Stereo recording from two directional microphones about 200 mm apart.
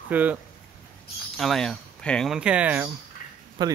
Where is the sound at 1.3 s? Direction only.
Centre (ahead or behind).